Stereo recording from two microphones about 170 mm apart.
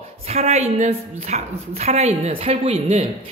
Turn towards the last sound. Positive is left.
turn(degrees=-35)  # may be behind; listen again after turning